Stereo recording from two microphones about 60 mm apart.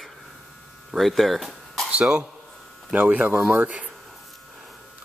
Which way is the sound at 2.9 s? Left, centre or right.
Right.